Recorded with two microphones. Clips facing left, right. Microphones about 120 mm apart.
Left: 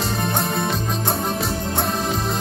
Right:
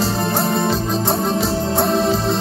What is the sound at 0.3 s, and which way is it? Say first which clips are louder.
Music: right 5 dB; centre (ahead or behind).